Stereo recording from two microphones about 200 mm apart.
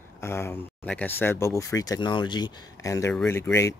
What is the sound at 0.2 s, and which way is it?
Speech, 10° left (ahead or behind).